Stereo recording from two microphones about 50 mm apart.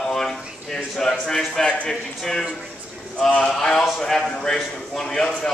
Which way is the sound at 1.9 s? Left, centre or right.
Centre.